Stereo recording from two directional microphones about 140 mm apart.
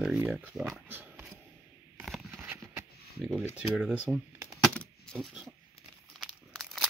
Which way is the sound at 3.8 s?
5° right (ahead or behind).